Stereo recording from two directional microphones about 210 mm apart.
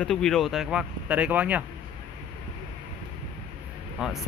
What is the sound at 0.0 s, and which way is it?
Speech, centre (ahead or behind).